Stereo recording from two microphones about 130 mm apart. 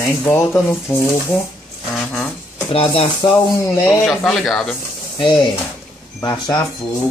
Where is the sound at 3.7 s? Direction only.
20° left (ahead or behind).